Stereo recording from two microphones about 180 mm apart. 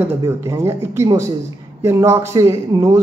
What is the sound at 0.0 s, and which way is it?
Speech, 15° right (ahead or behind).